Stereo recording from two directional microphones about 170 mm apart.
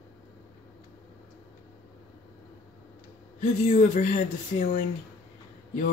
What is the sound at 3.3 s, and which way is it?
Speech, 45° left (ahead or behind).